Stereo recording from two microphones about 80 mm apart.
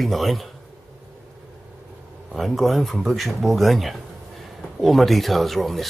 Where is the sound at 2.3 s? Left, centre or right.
Centre.